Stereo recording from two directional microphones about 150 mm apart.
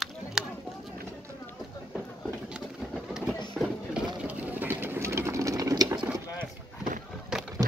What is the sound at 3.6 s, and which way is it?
Vehicle, 5° right (ahead or behind).